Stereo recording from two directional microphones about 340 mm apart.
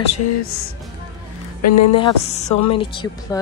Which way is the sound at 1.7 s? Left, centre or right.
Left.